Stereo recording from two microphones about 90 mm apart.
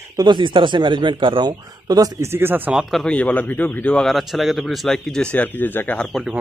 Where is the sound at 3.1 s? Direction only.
15° left (ahead or behind).